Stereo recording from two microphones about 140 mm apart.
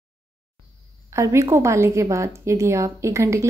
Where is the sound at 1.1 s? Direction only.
20° right (ahead or behind).